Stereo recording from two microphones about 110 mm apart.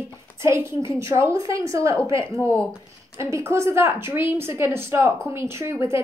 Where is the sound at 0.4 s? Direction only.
25° right (ahead or behind).